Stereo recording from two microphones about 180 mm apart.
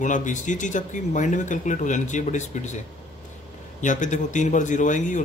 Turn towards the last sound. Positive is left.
turn(degrees=45)  # may be behind; listen again after turning